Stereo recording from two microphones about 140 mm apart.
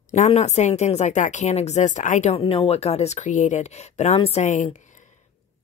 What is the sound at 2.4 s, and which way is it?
Speech, 40° left (ahead or behind).